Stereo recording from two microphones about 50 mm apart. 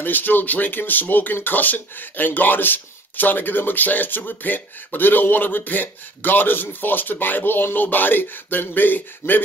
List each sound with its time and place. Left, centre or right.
0.0 s speech: left